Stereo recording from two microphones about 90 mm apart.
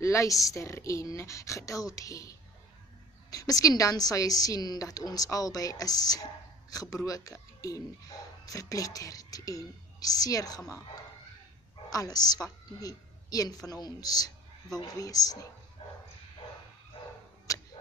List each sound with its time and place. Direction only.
0.0 s speech: 35° left (ahead or behind)
11.9 s a woman's voice: 45° left (ahead or behind)
17.0 s a sound: 90° left
17.5 s arrow: 40° left (ahead or behind)